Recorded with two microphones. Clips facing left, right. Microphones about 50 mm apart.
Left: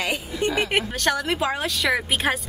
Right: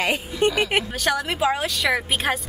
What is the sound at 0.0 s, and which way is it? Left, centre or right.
Speech, right.